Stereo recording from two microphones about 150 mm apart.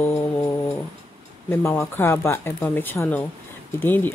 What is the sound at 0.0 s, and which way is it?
Music, 20° left (ahead or behind).